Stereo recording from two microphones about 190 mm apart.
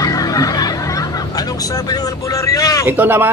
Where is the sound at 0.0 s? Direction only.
20° left (ahead or behind).